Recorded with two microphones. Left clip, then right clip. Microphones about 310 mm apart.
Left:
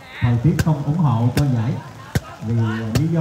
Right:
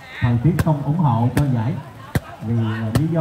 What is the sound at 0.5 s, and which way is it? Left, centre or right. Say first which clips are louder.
Speech: right 1 dB; centre.